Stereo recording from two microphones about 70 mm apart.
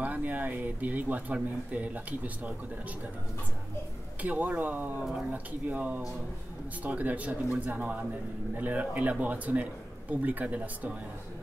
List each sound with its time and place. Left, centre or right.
0.0 s speech: right
4.2 s speech: right